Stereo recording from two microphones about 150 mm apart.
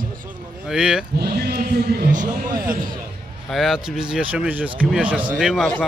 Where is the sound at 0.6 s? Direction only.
5° right (ahead or behind).